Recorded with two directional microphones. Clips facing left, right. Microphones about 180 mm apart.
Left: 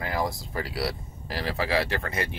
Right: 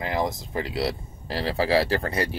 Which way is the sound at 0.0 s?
20° right (ahead or behind).